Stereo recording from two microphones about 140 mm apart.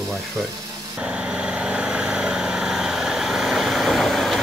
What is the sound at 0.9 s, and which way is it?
Vehicle, 5° right (ahead or behind).